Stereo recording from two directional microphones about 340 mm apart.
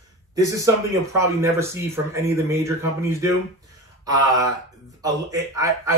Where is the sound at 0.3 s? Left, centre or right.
Centre.